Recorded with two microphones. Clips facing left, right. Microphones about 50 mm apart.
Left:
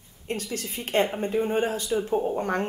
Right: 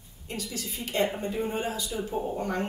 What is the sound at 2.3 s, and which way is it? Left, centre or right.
Speech, left.